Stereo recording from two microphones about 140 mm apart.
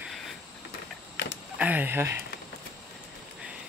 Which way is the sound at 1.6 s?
10° right (ahead or behind).